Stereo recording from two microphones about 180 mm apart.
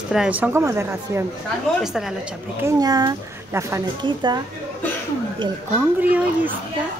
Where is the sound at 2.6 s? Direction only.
20° right (ahead or behind).